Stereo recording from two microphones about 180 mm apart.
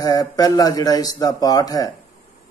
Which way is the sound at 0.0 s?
20° left (ahead or behind).